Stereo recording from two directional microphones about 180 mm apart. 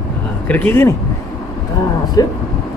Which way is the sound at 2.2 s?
20° left (ahead or behind).